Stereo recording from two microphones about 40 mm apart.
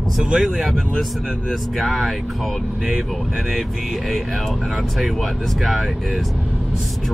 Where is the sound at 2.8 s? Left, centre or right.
Centre.